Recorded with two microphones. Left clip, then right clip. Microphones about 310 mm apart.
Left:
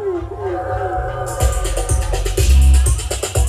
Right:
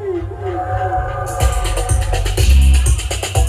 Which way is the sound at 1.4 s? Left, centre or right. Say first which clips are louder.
Right 1 dB; centre.